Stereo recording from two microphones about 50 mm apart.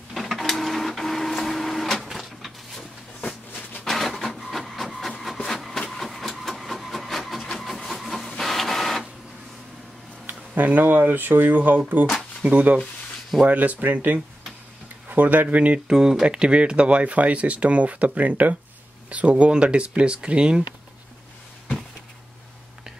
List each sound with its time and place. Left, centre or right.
0.1 s printer: centre
2.0 s a sound: centre
3.8 s printer: centre
5.6 s a sound: centre
7.5 s printer: centre
10.2 s speech: right
15.9 s speech: centre
16.3 s speech: right